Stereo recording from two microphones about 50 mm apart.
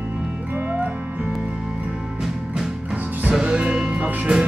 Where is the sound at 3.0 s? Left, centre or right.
Right.